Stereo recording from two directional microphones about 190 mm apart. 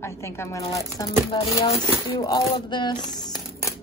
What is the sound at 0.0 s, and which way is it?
Speech, 15° left (ahead or behind).